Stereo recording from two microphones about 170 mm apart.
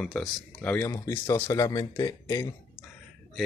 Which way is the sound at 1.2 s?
20° left (ahead or behind).